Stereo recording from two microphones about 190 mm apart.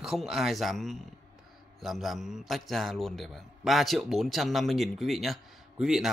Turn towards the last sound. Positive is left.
turn(degrees=0)  # may be behind; listen again after turning